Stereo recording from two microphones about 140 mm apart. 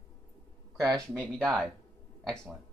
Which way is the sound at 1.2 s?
5° left (ahead or behind).